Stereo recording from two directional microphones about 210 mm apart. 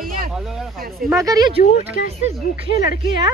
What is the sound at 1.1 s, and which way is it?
Speech, 15° right (ahead or behind).